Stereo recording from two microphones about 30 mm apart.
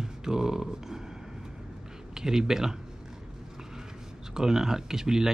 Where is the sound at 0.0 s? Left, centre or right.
Centre.